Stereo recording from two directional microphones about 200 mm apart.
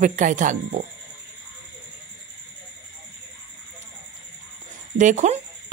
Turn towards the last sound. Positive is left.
turn(degrees=-35)  # may be behind; listen again after turning